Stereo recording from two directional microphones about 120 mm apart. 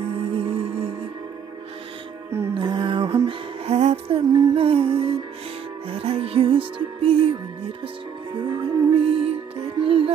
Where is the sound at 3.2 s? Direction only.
60° right (ahead or behind).